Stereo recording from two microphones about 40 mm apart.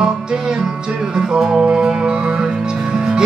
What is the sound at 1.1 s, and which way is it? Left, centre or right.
Music, centre.